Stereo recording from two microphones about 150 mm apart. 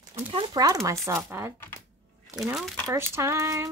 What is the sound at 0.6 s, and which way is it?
Speech, 20° right (ahead or behind).